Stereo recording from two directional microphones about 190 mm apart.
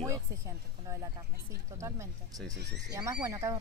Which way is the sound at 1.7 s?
15° right (ahead or behind).